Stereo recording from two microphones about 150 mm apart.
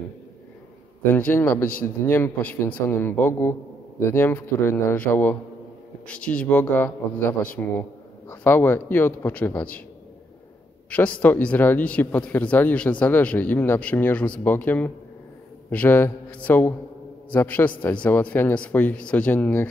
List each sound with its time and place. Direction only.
1.1 s speech: 10° left (ahead or behind)
10.9 s speech: 10° left (ahead or behind)